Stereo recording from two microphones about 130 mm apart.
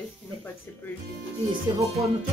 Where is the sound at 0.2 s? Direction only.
20° left (ahead or behind).